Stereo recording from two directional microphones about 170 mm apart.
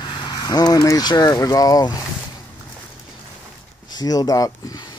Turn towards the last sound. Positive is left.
turn(degrees=20)  # may be behind; listen again after turning